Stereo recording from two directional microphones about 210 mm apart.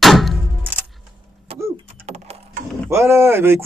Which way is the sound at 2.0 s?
30° right (ahead or behind).